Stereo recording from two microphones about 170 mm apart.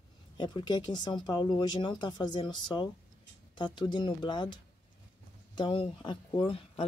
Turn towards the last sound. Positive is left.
turn(degrees=30)  # may be behind; listen again after turning